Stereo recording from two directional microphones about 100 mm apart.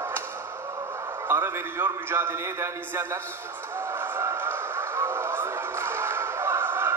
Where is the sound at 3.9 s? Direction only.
25° right (ahead or behind).